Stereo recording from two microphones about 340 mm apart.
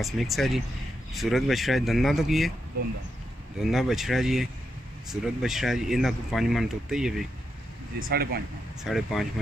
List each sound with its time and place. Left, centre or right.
0.0 s speech: centre
3.5 s speech: centre
8.0 s speech: right
8.8 s speech: centre